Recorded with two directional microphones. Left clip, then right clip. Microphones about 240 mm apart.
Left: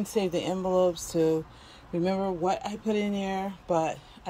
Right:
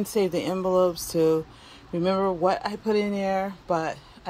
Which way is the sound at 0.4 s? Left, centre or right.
Right.